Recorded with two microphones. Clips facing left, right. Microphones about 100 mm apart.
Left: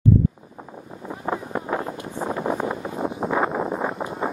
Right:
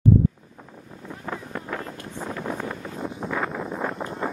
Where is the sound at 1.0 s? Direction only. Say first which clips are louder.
Left 6 dB; 25° left (ahead or behind).